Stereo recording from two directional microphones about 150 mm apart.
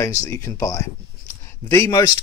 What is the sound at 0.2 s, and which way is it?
Speech, 20° left (ahead or behind).